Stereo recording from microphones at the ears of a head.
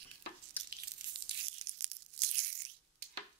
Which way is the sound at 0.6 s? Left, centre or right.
Right.